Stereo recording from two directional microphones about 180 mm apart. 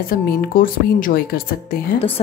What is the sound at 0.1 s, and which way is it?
A woman's voice, 50° left (ahead or behind).